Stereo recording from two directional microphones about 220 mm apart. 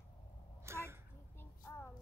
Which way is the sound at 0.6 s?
10° right (ahead or behind).